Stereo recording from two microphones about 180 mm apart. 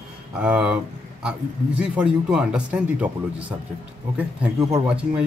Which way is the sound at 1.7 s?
5° right (ahead or behind).